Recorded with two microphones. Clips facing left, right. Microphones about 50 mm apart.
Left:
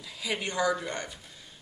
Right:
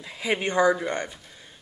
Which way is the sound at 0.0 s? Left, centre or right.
Right.